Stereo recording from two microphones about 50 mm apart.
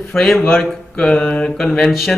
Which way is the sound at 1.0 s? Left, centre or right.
Centre.